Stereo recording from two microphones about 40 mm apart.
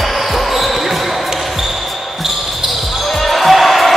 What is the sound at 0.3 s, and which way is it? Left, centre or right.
Basketball bounce, centre.